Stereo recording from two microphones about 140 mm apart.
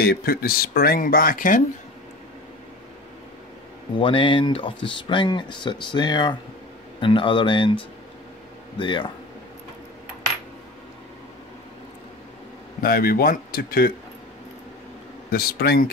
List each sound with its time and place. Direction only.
0.0 s speech: 90° left
3.9 s speech: 35° left (ahead or behind)
12.8 s speech: 90° left
15.3 s speech: 90° left